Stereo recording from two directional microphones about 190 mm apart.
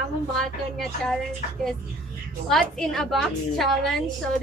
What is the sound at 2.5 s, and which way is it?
A woman's voice, centre (ahead or behind).